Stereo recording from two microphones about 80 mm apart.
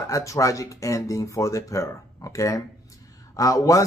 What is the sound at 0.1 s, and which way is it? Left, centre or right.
Speech, left.